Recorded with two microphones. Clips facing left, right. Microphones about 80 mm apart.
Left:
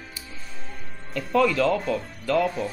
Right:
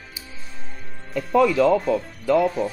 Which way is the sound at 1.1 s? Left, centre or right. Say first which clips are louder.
Right 3 dB; centre.